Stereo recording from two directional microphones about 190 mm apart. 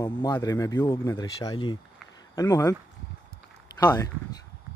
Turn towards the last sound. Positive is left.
turn(degrees=20)  # may be behind; listen again after turning